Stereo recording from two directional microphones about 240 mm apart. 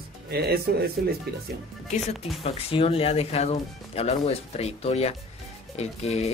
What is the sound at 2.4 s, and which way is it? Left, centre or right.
Speech, left.